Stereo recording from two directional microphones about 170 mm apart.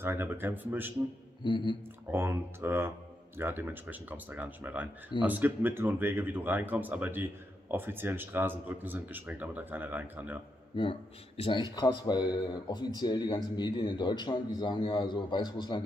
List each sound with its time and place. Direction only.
0.0 s speech: 10° right (ahead or behind)
1.4 s speech: 25° left (ahead or behind)
2.0 s speech: 15° right (ahead or behind)
10.8 s speech: 30° left (ahead or behind)